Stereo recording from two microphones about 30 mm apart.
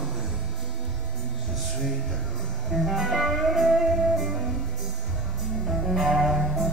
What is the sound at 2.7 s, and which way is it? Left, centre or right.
Music, centre.